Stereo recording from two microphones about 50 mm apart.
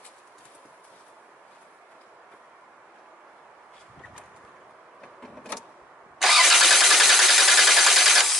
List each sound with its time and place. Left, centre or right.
5.0 s printer: centre
6.1 s engine starting: centre